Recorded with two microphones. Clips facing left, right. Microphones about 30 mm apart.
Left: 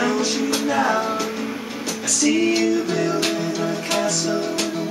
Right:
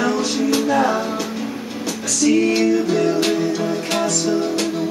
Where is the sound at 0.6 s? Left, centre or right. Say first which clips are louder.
Right 1 dB; centre.